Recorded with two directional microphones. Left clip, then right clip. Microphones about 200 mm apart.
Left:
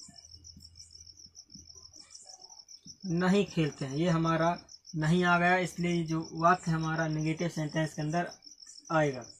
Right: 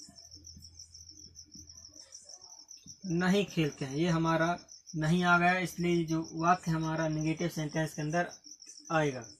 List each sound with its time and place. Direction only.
3.2 s speech: 10° left (ahead or behind)
8.8 s cricket: 5° left (ahead or behind)